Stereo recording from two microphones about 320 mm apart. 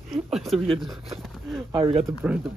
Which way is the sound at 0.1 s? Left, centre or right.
Centre.